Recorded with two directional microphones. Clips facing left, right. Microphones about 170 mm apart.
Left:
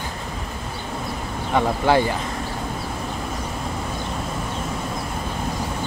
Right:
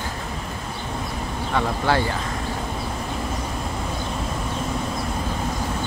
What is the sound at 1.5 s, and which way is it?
Speech, 15° left (ahead or behind).